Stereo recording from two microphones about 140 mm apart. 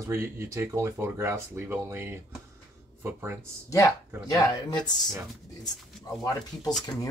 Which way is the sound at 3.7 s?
25° left (ahead or behind).